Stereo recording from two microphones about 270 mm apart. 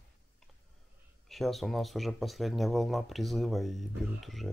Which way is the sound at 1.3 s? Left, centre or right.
Centre.